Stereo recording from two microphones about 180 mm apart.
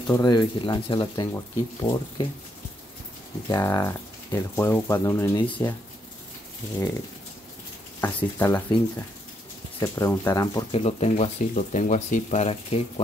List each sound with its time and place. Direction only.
0.0 s speech: 20° left (ahead or behind)
3.4 s speech: 20° left (ahead or behind)
8.0 s speech: 15° left (ahead or behind)
9.8 s speech: 15° left (ahead or behind)
10.7 s speech: 35° left (ahead or behind)